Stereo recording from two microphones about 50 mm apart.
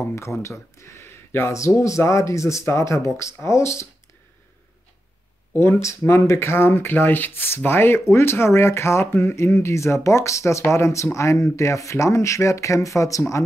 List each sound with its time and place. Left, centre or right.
0.1 s speech: left
1.5 s speech: left
5.5 s speech: left
5.8 s speech: left